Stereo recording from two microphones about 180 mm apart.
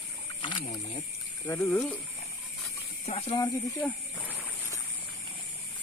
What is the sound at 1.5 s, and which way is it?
Speech, 10° left (ahead or behind).